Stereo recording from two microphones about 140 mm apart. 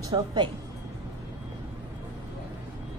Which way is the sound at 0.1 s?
30° right (ahead or behind).